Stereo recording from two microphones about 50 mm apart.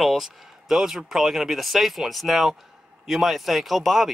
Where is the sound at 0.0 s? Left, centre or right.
Centre.